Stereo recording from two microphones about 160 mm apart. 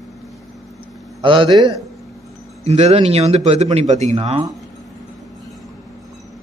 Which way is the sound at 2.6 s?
40° right (ahead or behind).